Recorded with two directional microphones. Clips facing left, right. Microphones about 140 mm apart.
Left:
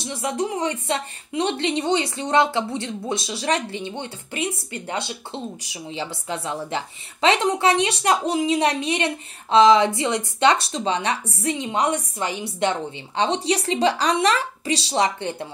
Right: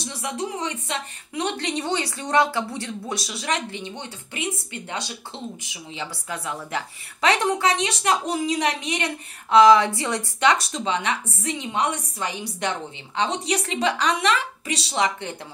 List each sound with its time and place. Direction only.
0.2 s speech: 35° left (ahead or behind)
5.6 s speech: 35° left (ahead or behind)
6.2 s speech: 25° left (ahead or behind)